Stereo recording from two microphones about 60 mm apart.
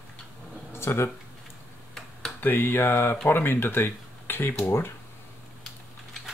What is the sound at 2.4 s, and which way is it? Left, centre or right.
Speech, left.